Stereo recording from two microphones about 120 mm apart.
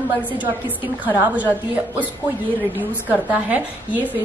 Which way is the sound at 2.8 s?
15° right (ahead or behind).